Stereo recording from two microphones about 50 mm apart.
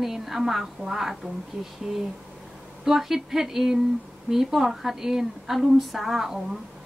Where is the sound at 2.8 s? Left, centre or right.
Centre.